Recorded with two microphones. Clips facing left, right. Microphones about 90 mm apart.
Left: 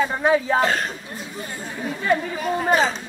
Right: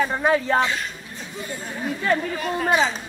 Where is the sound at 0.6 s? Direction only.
45° left (ahead or behind).